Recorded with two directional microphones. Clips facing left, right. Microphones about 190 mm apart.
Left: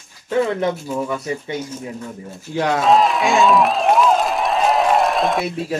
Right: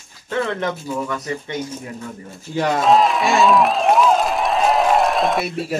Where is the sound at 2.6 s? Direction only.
Centre (ahead or behind).